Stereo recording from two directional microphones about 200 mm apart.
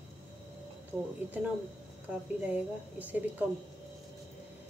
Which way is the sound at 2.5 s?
10° right (ahead or behind).